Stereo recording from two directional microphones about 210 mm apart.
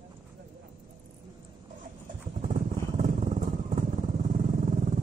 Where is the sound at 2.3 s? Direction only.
35° right (ahead or behind).